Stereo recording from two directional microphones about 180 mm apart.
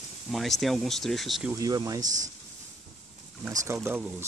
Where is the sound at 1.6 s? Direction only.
20° right (ahead or behind).